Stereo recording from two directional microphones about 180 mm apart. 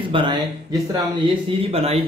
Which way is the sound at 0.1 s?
25° right (ahead or behind).